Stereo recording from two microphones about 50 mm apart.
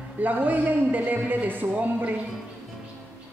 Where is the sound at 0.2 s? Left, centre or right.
Right.